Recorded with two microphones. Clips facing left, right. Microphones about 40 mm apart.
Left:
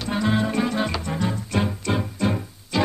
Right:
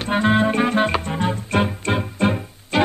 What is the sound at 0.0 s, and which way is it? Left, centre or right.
Music, right.